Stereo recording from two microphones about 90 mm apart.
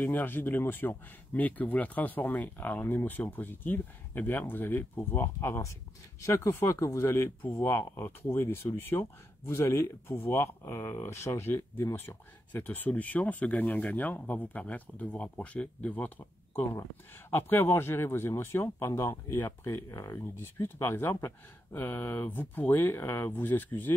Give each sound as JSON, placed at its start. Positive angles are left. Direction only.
{"t": 0.0, "sound": "speech", "side_deg": 20}
{"t": 7.6, "sound": "speech", "side_deg": 25}
{"t": 20.3, "sound": "speech", "side_deg": 25}
{"t": 23.3, "sound": "speech", "side_deg": 20}